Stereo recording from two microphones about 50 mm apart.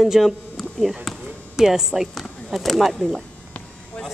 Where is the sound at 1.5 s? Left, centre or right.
Centre.